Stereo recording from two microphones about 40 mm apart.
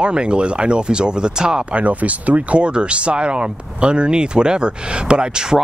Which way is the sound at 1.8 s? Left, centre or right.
Right.